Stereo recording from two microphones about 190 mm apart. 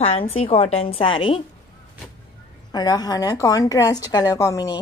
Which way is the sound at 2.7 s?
20° left (ahead or behind).